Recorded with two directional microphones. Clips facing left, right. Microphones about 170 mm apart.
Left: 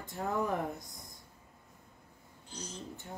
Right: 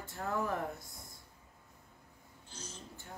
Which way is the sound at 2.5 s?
15° left (ahead or behind).